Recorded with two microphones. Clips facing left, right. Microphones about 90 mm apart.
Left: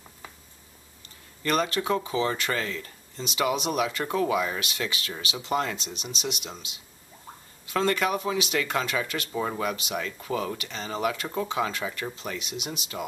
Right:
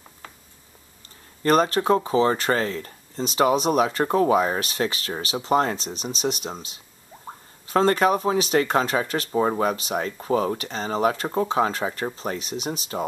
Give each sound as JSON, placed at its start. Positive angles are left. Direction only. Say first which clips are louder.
{"t": 1.4, "sound": "speech", "louder": "right 7 dB", "side_deg": -40}